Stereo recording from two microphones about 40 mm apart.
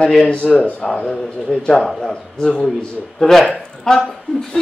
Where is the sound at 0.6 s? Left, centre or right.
Left.